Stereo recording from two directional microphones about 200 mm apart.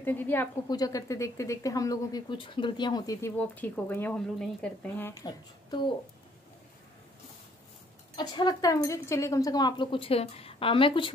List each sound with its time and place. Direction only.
0.0 s a woman's voice: 10° left (ahead or behind)
5.2 s speech: 20° left (ahead or behind)
8.2 s speech: 20° left (ahead or behind)